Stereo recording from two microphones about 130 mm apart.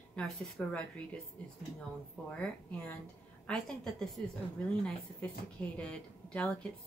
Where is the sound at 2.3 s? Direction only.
10° left (ahead or behind).